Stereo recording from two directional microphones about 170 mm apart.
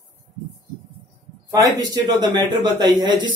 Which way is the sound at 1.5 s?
20° right (ahead or behind).